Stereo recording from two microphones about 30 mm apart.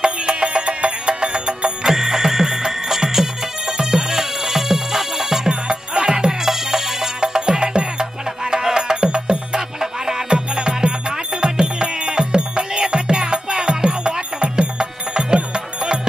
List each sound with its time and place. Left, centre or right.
0.0 s music: right
1.9 s music: centre
3.6 s music: right
6.5 s music: centre
7.2 s music: right
9.8 s music: centre